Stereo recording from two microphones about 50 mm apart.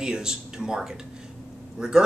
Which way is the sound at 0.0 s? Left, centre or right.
Centre.